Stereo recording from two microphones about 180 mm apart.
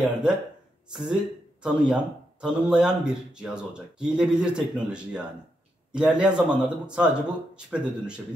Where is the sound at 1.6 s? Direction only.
5° right (ahead or behind).